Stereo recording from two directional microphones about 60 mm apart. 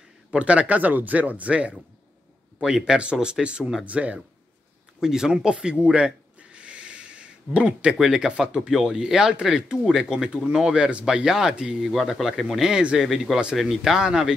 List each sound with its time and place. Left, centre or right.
0.3 s speech: centre
5.0 s speech: centre